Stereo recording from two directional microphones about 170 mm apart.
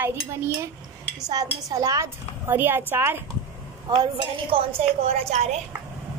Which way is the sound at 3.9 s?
30° right (ahead or behind).